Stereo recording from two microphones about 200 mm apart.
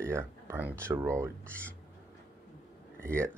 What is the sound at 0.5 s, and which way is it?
Speech, 10° right (ahead or behind).